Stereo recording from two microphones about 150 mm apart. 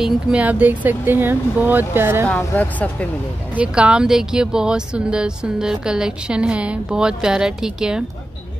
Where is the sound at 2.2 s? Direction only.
10° left (ahead or behind).